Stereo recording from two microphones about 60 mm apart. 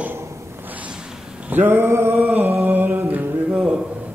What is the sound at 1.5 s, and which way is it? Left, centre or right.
Male singing, right.